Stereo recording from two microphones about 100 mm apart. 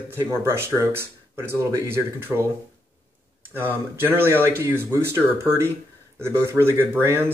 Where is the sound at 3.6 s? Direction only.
20° right (ahead or behind).